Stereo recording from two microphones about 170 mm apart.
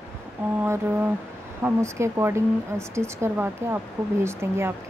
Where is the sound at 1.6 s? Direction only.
15° right (ahead or behind).